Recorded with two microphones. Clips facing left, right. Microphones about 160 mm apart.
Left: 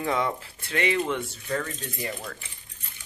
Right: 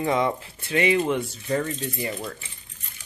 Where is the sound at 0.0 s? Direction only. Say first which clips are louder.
Right 4 dB; 10° right (ahead or behind).